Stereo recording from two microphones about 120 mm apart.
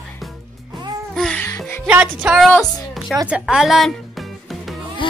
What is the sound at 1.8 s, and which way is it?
Music, 10° right (ahead or behind).